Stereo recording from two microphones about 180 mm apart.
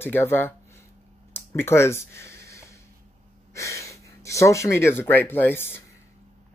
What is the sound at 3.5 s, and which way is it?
Speech, 15° left (ahead or behind).